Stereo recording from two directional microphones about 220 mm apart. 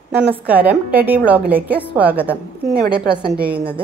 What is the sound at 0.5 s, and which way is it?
A woman's voice, 5° right (ahead or behind).